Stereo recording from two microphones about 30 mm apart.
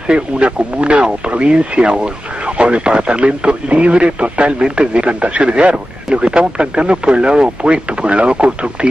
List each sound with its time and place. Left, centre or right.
0.1 s speech: right
4.9 s a man's voice: right
6.0 s speech: right